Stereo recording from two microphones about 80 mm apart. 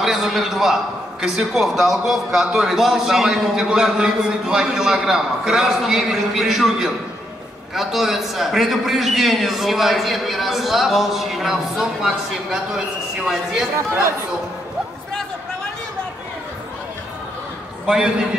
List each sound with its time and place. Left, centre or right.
0.0 s a man's voice: centre
17.8 s a man's voice: centre